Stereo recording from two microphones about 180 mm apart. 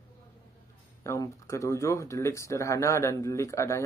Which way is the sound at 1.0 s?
15° left (ahead or behind).